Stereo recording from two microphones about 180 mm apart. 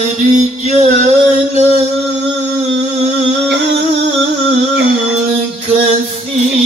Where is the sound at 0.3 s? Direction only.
40° right (ahead or behind).